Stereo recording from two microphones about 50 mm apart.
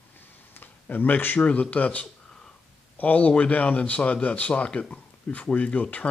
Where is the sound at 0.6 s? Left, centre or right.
Left.